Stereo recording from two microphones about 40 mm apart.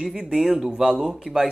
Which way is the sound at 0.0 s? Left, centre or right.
Centre.